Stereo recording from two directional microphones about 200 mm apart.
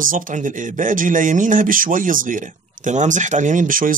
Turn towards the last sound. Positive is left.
turn(degrees=-40)  # may be behind; listen again after turning